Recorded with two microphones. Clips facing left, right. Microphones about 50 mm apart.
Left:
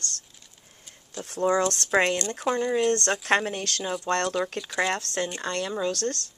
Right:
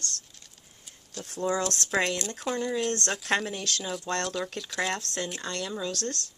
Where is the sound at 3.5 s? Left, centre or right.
Left.